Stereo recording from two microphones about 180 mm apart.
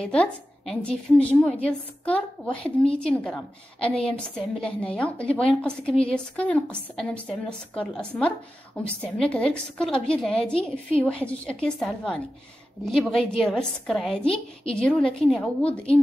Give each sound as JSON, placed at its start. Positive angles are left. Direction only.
{"t": 0.0, "sound": "a woman's voice", "side_deg": 5}